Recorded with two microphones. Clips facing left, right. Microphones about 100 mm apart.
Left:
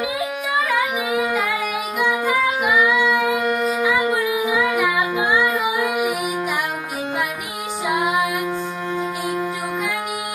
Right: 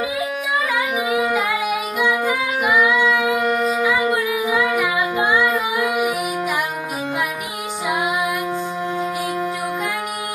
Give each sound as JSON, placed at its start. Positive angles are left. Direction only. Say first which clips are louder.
{"t": 0.7, "sound": "music", "louder": "even", "side_deg": -5}